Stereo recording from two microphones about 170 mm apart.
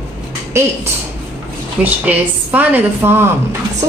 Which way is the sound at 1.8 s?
10° right (ahead or behind).